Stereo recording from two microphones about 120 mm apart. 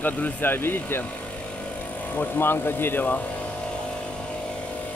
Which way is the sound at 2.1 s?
15° left (ahead or behind).